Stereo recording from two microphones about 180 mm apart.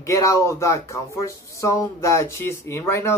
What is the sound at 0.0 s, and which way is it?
Speech, 15° left (ahead or behind).